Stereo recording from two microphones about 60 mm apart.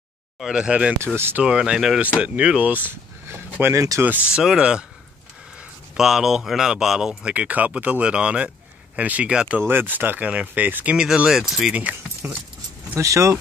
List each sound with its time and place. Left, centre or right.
0.5 s speech: centre
1.0 s speech: right
1.4 s speech: centre
3.7 s speech: right
4.4 s speech: centre
5.9 s speech: centre
7.3 s speech: right
9.6 s speech: right
11.0 s speech: centre
12.2 s speech: right
13.0 s speech: right